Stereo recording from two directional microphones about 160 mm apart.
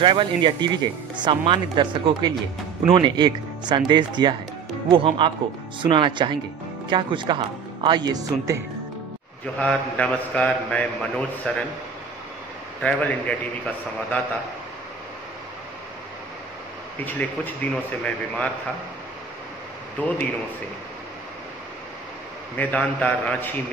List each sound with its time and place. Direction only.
0.0 s speech: 30° right (ahead or behind)
9.6 s a man's voice: 5° left (ahead or behind)
12.8 s a man's voice: 10° left (ahead or behind)
17.0 s a man's voice: 10° left (ahead or behind)
22.6 s a man's voice: 10° left (ahead or behind)